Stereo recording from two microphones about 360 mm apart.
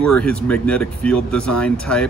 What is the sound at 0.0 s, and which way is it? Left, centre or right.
Speech, centre.